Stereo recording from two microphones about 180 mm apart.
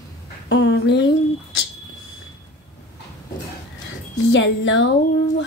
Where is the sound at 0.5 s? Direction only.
80° left.